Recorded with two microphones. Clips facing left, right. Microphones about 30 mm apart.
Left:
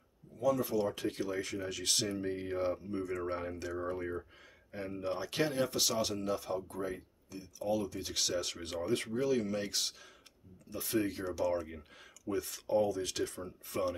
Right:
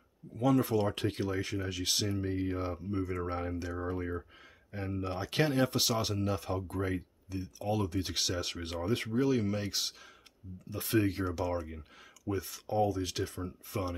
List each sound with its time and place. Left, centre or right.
0.4 s speech: right
1.0 s speech: right
1.3 s speech: centre
6.7 s speech: right
8.2 s speech: centre
10.8 s speech: centre
11.5 s speech: centre